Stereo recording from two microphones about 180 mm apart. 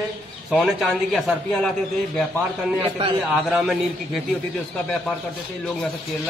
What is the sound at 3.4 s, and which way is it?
Speech, centre (ahead or behind).